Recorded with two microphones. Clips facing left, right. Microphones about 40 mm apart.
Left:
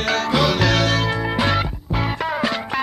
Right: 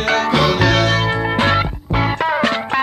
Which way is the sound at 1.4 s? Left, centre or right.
Centre.